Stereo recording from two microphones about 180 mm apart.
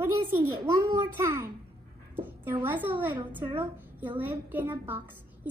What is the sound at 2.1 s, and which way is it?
A woman's voice, 10° right (ahead or behind).